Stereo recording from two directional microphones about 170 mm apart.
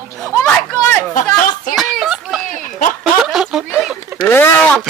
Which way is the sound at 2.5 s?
50° left (ahead or behind).